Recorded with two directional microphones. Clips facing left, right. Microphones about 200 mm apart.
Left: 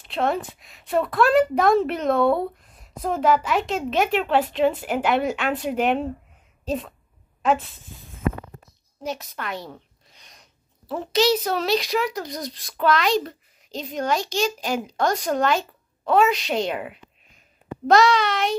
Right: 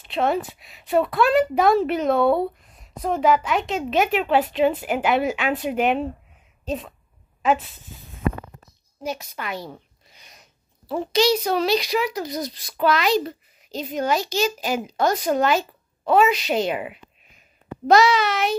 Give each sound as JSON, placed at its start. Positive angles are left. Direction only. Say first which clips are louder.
{"t": 0.0, "sound": "a woman's voice", "louder": "right 2 dB", "side_deg": 0}
{"t": 6.6, "sound": "a sound", "louder": "left 1 dB", "side_deg": 0}
{"t": 7.4, "sound": "a woman's voice", "louder": "right 1 dB", "side_deg": 0}